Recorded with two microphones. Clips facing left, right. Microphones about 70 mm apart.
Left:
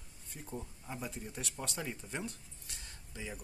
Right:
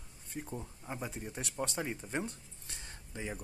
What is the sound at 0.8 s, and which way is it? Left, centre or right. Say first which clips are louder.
Speech: right 2 dB; right.